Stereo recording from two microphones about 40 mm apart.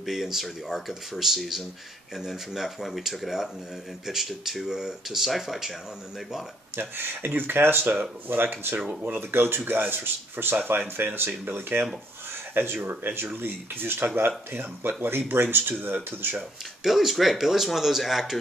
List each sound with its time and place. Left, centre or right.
0.0 s speech: centre
6.8 s speech: right
11.1 s speech: right
14.1 s speech: right
16.8 s speech: centre